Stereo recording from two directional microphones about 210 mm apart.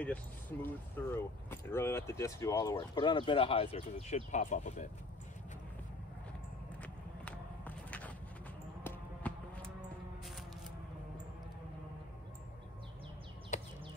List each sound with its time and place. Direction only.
0.0 s speech: 5° left (ahead or behind); by 4.8 s 35° left (ahead or behind)
6.8 s run: 5° left (ahead or behind)
8.8 s music: 5° left (ahead or behind)